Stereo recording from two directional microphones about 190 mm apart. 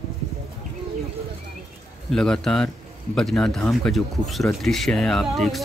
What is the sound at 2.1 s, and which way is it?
Speech, 5° left (ahead or behind).